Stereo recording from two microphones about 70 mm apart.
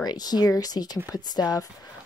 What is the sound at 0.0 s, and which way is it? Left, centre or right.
Speech, left.